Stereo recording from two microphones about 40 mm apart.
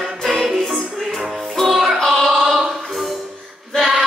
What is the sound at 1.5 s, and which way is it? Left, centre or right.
Music, centre.